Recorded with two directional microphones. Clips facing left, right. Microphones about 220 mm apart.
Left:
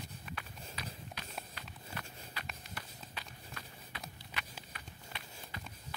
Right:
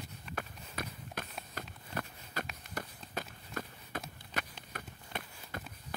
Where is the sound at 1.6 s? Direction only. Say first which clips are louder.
Right 6 dB; 45° right (ahead or behind).